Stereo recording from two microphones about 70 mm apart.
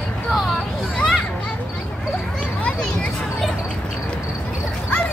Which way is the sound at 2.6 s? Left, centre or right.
Centre.